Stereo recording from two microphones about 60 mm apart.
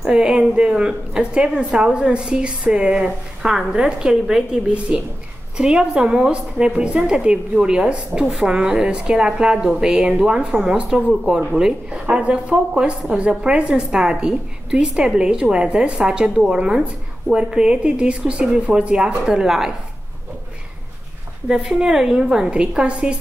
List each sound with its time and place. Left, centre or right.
0.0 s a woman's voice: centre
21.5 s a woman's voice: centre